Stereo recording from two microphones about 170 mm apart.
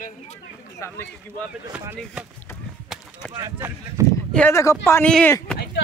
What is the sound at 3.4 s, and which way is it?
Speech, 20° right (ahead or behind).